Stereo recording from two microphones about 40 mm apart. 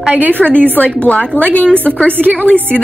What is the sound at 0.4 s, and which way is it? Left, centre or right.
Speech, left.